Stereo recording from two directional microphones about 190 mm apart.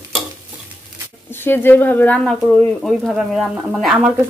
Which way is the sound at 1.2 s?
10° left (ahead or behind).